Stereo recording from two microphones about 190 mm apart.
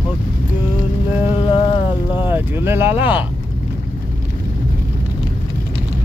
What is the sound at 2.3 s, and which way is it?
Speech, 10° right (ahead or behind).